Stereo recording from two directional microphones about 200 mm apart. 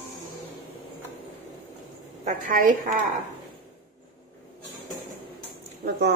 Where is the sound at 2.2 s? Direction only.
40° right (ahead or behind).